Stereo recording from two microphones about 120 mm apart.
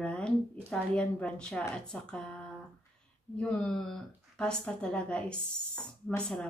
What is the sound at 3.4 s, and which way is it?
Speech, 5° left (ahead or behind).